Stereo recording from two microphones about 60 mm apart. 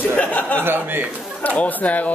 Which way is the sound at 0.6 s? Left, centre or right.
Right.